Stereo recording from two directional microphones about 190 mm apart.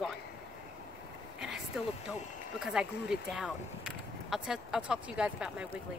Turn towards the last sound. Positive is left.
turn(degrees=-5)  # may be behind; listen again after turning